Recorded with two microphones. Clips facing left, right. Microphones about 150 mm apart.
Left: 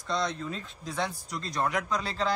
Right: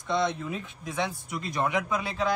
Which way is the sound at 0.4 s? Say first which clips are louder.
Right 2 dB; 10° right (ahead or behind).